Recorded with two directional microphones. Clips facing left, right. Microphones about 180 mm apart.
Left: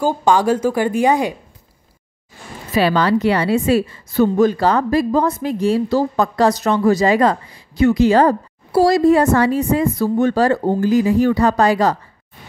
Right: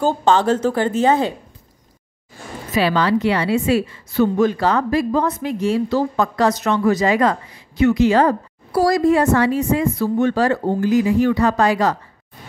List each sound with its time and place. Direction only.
0.0 s speech: 10° left (ahead or behind)
2.7 s a woman's voice: 45° left (ahead or behind); by 9.1 s 25° left (ahead or behind)
9.1 s a woman's voice: 40° left (ahead or behind)